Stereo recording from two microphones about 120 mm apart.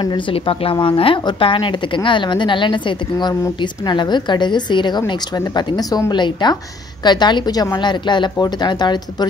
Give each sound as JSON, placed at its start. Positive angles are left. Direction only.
{"t": 0.0, "sound": "a woman's voice", "side_deg": 45}